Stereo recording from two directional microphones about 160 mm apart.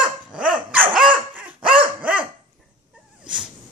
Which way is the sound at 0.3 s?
5° right (ahead or behind).